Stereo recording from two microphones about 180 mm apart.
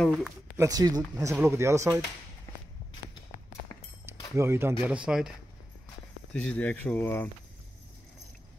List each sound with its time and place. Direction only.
0.0 s speech: 5° right (ahead or behind)
0.7 s speech: 20° right (ahead or behind)
4.4 s speech: 15° right (ahead or behind)
6.3 s speech: 5° left (ahead or behind)